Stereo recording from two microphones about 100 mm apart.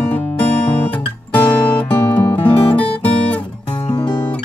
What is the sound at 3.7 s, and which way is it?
Guitar, 50° left (ahead or behind).